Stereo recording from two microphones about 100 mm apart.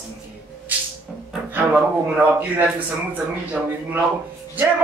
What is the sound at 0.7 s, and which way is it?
Music, 15° right (ahead or behind).